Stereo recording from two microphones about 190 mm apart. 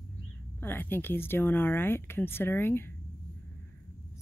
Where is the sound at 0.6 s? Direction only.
10° left (ahead or behind).